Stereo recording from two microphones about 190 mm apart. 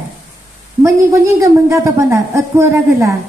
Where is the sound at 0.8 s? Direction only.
15° right (ahead or behind).